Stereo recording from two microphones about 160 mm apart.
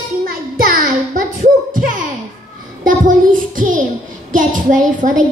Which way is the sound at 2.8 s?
55° right (ahead or behind).